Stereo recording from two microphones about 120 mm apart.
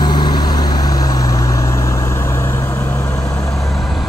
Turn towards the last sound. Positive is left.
turn(degrees=25)  # may be behind; listen again after turning